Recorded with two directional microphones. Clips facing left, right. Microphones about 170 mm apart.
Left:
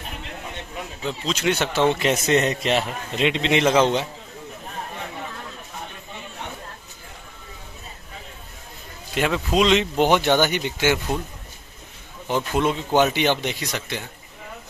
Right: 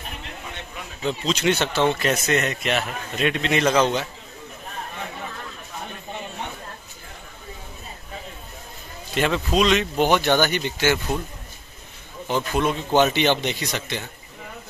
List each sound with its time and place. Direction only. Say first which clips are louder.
1.0 s a man's voice: right 2 dB; 5° left (ahead or behind); by 4.1 s 25° left (ahead or behind)
9.1 s speech: even; 10° left (ahead or behind)
12.3 s speech: left 1 dB; 15° left (ahead or behind)